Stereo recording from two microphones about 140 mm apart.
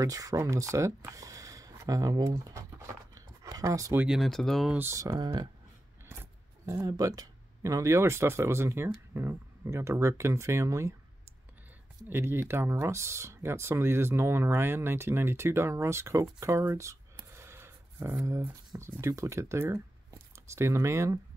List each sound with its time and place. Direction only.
0.0 s speech: 25° right (ahead or behind)
4.0 s speech: centre (ahead or behind)
4.7 s speech: 20° right (ahead or behind)
6.6 s speech: 25° right (ahead or behind)
12.1 s speech: 15° right (ahead or behind)